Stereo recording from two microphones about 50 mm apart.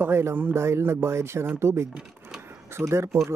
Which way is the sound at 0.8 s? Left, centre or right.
Right.